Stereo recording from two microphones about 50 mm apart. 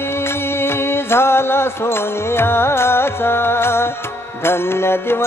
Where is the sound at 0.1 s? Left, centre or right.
Left.